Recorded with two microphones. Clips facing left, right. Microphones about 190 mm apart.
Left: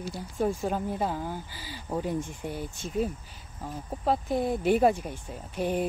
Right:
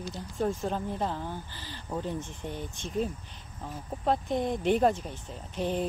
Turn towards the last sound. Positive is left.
turn(degrees=10)  # may be behind; listen again after turning